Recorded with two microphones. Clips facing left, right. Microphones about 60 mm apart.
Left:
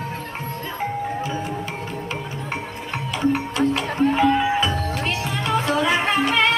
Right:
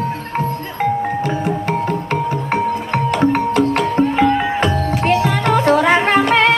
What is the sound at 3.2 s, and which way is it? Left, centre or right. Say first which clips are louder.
Music: right 4 dB; right.